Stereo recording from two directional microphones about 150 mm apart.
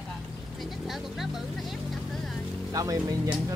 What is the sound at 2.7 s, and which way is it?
Speech, 25° right (ahead or behind).